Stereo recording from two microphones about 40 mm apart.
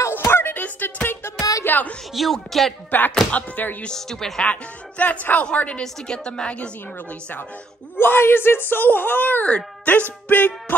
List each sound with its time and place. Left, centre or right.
0.1 s music: left
0.5 s music: left
2.2 s speech: centre
2.9 s music: left
3.9 s speech: centre
5.0 s speech: left
5.7 s a woman's voice: left
8.0 s speech: left
10.3 s music: left